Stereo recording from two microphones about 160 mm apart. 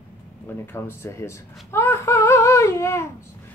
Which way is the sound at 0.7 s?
15° left (ahead or behind).